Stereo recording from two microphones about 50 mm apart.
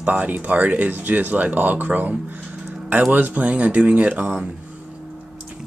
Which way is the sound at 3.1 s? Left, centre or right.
Right.